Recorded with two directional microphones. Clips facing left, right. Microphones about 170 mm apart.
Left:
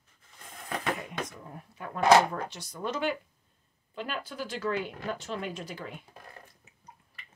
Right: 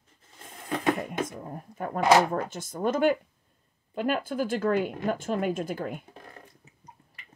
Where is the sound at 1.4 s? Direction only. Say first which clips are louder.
Right 7 dB; 45° right (ahead or behind).